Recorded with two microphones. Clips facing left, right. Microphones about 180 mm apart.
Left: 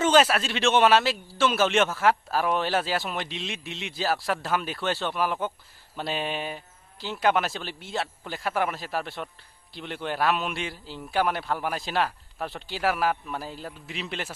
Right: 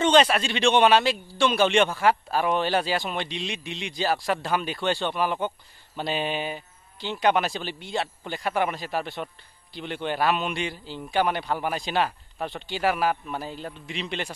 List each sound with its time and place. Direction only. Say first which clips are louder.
0.0 s a man's voice: right 1 dB; 5° left (ahead or behind)